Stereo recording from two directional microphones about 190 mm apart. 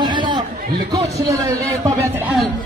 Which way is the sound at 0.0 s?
25° right (ahead or behind).